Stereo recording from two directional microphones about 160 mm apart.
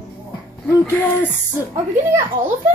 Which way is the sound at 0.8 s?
10° left (ahead or behind).